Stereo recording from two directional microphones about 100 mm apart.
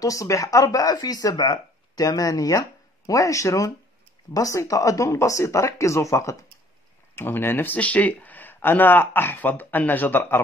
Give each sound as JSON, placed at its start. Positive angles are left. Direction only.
{"t": 0.0, "sound": "speech", "side_deg": 35}